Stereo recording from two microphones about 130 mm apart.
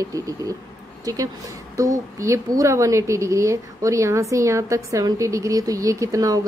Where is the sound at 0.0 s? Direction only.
25° right (ahead or behind).